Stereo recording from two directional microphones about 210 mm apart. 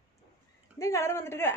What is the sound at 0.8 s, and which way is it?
Speech, 15° left (ahead or behind).